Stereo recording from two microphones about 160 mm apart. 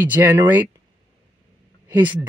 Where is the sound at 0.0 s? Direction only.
10° right (ahead or behind).